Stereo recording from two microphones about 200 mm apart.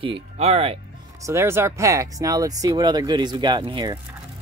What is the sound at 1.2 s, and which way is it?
Speech, 15° right (ahead or behind).